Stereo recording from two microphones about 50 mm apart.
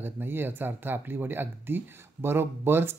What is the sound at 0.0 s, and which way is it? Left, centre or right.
Speech, right.